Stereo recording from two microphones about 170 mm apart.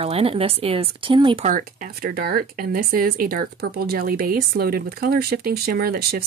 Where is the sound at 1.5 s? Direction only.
55° right (ahead or behind).